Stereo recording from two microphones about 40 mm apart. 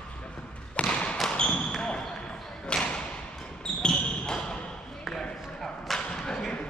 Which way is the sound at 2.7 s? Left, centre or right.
Left.